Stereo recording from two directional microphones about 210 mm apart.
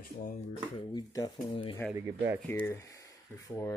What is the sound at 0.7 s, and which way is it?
Speech, 15° left (ahead or behind).